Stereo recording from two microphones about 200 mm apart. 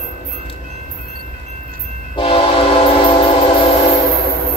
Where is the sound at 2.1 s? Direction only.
25° left (ahead or behind).